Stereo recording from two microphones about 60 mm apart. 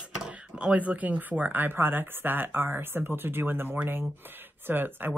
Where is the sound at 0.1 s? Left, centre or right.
Centre.